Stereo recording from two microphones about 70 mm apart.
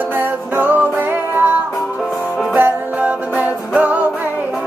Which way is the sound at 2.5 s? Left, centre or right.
Right.